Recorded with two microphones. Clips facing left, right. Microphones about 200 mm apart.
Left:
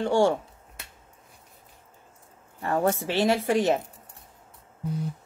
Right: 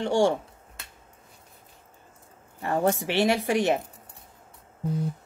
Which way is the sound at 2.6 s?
15° right (ahead or behind).